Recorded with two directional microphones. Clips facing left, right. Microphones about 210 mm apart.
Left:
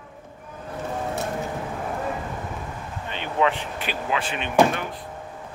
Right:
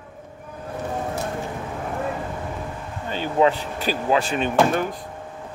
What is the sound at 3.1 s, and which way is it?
Speech, 35° right (ahead or behind).